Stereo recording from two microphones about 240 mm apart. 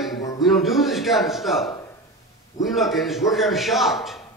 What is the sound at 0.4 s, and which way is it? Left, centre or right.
A man's voice, centre.